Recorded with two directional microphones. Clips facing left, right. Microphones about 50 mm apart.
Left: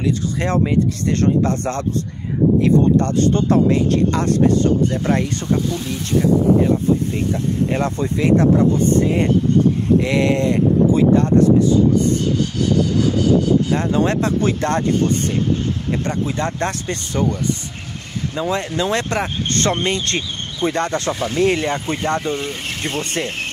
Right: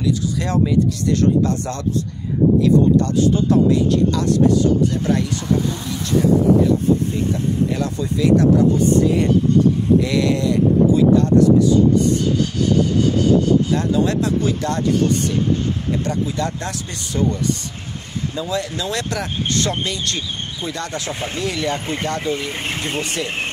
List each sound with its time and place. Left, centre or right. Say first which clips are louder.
0.0 s speech: left 1 dB; left
7.7 s speech: left 2 dB; left
13.7 s speech: left 1 dB; left
22.5 s speech: even; right